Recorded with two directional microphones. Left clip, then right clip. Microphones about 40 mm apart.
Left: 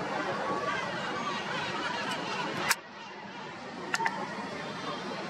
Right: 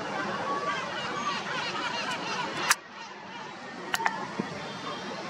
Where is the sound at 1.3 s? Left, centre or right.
Right.